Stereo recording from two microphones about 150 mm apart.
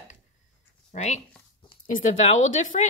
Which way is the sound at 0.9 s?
50° left (ahead or behind).